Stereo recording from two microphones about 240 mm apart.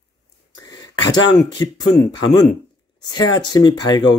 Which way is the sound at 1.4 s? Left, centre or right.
Centre.